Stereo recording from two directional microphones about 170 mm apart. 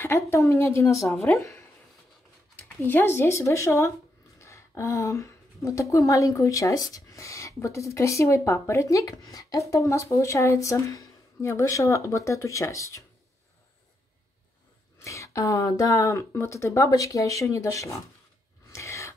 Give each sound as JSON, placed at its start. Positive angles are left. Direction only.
{"t": 0.0, "sound": "a woman's voice", "side_deg": 15}
{"t": 15.0, "sound": "speech", "side_deg": 20}
{"t": 18.7, "sound": "a sound", "side_deg": 15}